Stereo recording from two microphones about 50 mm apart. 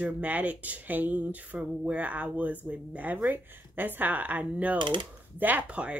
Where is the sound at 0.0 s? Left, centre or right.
Right.